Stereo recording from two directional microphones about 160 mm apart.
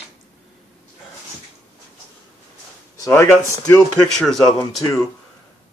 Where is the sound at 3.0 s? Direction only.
15° left (ahead or behind).